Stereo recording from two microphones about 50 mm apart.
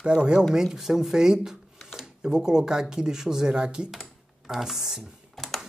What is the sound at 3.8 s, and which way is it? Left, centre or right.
Speech, centre.